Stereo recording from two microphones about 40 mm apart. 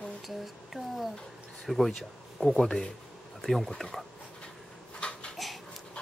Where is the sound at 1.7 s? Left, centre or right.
Centre.